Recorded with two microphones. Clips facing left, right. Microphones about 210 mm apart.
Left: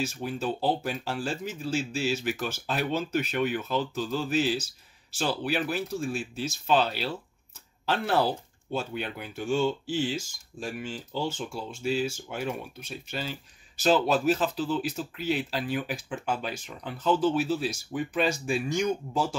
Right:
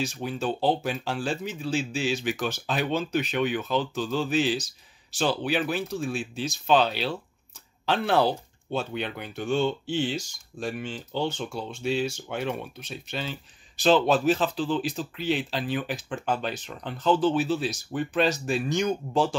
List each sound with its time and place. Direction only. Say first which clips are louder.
0.0 s speech: right 1 dB; 5° left (ahead or behind)